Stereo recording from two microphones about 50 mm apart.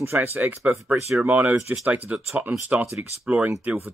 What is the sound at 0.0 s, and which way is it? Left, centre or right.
Speech, right.